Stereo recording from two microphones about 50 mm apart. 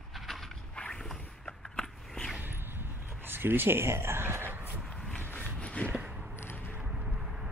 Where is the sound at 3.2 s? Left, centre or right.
Right.